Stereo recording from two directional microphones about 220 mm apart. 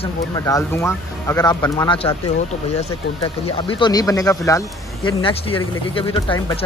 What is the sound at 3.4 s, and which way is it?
Speech, 25° left (ahead or behind).